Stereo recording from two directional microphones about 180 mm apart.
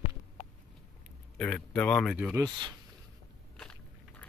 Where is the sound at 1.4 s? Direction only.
5° left (ahead or behind).